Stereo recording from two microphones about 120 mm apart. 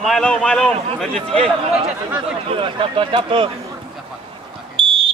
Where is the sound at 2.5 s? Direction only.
45° right (ahead or behind).